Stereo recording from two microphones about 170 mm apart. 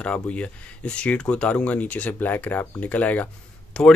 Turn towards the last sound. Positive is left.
turn(degrees=5)  # may be behind; listen again after turning